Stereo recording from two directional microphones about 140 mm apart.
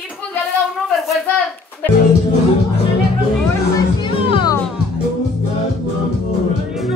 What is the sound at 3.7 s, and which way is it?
Music, 35° left (ahead or behind).